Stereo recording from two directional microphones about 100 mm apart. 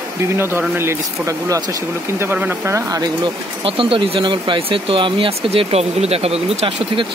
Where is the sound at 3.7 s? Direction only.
65° right (ahead or behind); by 7.0 s 80° right.